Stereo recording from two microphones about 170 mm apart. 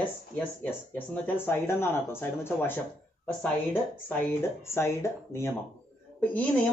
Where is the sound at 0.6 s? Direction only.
10° left (ahead or behind).